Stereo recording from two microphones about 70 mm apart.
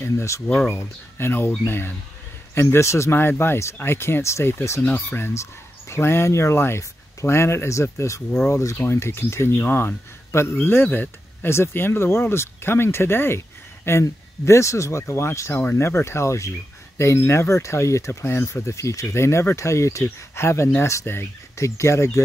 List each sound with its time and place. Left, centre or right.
0.0 s speech: left
4.8 s speech: left
5.3 s speech: left